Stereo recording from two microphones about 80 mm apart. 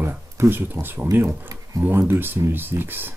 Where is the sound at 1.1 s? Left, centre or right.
Right.